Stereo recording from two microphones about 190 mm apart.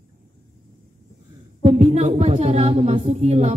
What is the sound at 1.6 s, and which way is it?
Speech, 30° right (ahead or behind).